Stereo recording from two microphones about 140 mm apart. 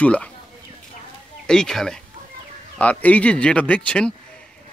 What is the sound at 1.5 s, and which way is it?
Speech, 5° left (ahead or behind).